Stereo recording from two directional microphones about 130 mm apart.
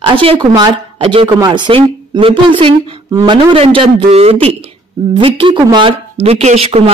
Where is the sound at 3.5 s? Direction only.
50° right (ahead or behind).